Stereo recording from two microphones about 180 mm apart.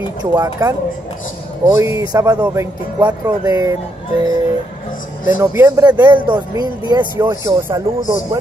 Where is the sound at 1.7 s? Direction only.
15° right (ahead or behind).